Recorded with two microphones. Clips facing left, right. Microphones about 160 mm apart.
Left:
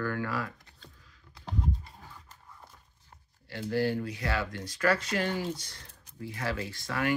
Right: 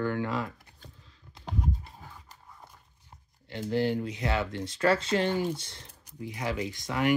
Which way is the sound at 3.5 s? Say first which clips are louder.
Right 1 dB; 20° right (ahead or behind).